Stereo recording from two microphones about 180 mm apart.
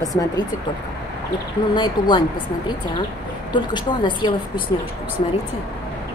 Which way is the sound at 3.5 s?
25° left (ahead or behind).